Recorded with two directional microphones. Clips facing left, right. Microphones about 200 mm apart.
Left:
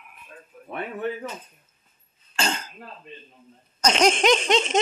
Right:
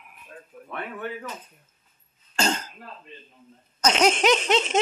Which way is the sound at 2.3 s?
40° right (ahead or behind).